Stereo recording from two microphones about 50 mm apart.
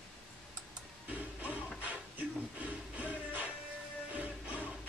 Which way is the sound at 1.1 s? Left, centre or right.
Right.